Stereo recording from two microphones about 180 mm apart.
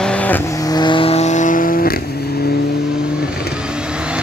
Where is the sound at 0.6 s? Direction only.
25° left (ahead or behind); by 1.9 s 50° left (ahead or behind).